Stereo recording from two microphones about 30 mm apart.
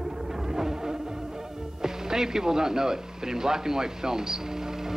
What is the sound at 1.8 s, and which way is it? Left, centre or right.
Speech, centre.